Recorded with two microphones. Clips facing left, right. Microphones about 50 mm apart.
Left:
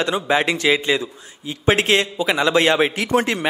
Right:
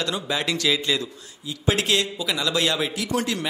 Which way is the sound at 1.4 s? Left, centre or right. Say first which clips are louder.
Left 6 dB; left.